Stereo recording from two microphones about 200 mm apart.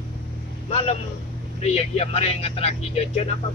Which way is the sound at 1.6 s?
30° left (ahead or behind).